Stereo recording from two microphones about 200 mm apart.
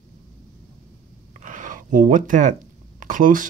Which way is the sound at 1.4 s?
40° right (ahead or behind).